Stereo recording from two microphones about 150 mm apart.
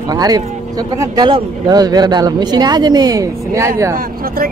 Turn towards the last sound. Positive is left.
turn(degrees=-75)  # may be behind; listen again after turning